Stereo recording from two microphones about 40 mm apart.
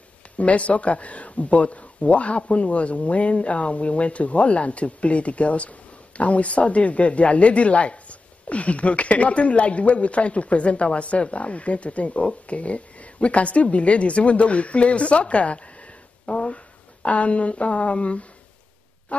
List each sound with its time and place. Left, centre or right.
0.4 s a woman's voice: left